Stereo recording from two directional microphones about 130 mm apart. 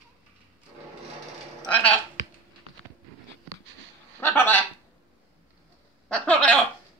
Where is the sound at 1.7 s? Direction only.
10° left (ahead or behind).